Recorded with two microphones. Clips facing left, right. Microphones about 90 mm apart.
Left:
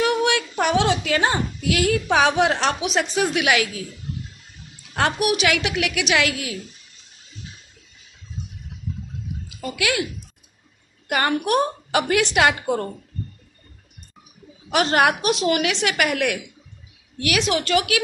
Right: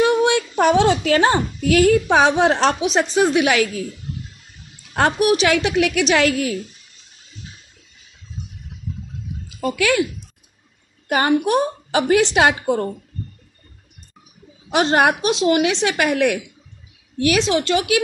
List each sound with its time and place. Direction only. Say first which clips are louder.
0.0 s a child's voice: right 4 dB; 30° right (ahead or behind)
4.9 s a child's voice: right 4 dB; 35° right (ahead or behind)
9.6 s a child's voice: right 6 dB; 40° right (ahead or behind)
11.1 s a woman's voice: right 4 dB; 25° right (ahead or behind)
14.7 s a woman's voice: right 2 dB; 30° right (ahead or behind)